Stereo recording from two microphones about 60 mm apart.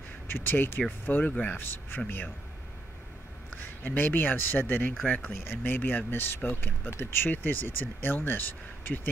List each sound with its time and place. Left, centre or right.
0.3 s speech: left
3.4 s speech: left